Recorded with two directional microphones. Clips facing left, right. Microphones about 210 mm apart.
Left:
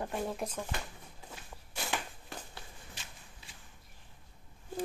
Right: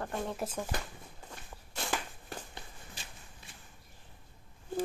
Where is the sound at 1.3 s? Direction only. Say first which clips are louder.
Even; centre (ahead or behind).